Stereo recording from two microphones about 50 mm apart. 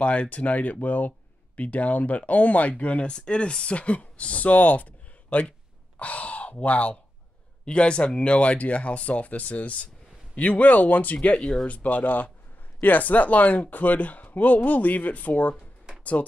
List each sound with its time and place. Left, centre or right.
0.0 s speech: left
11.3 s speech: centre
11.6 s speech: left